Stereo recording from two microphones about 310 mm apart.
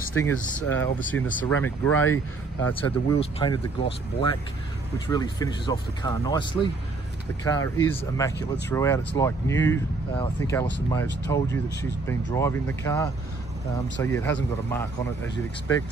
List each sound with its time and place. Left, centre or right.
0.1 s speech: centre